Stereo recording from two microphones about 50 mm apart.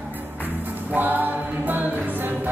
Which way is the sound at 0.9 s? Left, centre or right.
Right.